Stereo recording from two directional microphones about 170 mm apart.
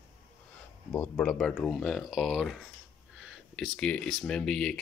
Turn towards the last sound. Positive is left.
turn(degrees=5)  # may be behind; listen again after turning